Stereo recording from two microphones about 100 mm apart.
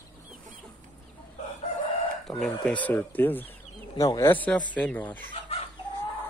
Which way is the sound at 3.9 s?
35° left (ahead or behind).